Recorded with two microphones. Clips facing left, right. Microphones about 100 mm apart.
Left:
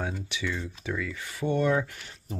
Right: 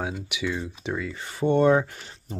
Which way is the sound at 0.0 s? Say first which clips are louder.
Right 3 dB; 10° right (ahead or behind).